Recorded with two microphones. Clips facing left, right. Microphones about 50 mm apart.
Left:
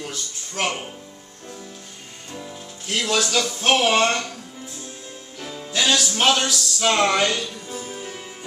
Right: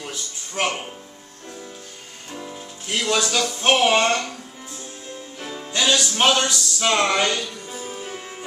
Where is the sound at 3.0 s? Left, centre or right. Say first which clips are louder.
Even; centre.